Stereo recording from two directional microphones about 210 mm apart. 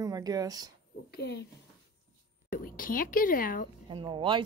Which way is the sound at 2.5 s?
40° left (ahead or behind).